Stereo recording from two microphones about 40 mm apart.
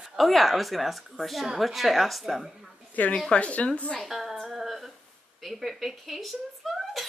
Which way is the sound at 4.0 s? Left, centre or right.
Centre.